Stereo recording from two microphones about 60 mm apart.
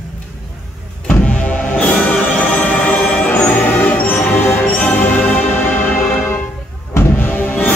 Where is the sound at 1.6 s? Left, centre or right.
Left.